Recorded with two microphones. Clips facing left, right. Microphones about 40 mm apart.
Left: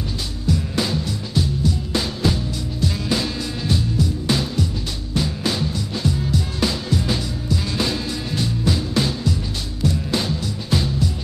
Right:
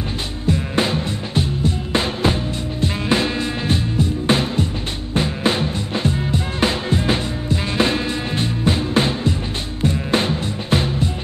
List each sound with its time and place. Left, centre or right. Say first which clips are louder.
0.5 s music: right 3 dB; right